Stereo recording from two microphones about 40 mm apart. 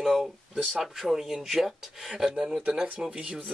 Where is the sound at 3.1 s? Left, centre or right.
Right.